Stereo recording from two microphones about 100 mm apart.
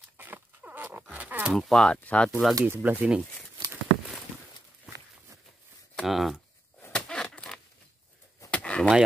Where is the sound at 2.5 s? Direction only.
20° right (ahead or behind).